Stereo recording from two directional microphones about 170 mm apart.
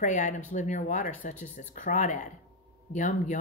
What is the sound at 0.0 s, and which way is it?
A woman's voice, 45° left (ahead or behind).